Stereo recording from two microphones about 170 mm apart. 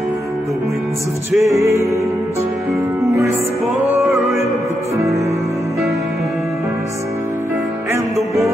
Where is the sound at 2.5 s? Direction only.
Centre (ahead or behind).